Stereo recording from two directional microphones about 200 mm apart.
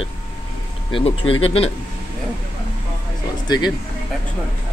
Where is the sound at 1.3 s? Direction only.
30° left (ahead or behind).